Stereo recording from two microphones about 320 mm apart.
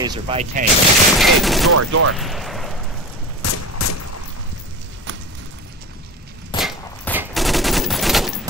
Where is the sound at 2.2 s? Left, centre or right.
Centre.